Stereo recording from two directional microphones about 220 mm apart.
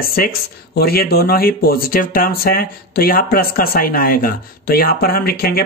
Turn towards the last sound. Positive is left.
turn(degrees=45)  # may be behind; listen again after turning